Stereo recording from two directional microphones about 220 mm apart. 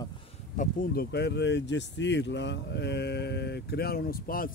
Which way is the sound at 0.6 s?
40° left (ahead or behind).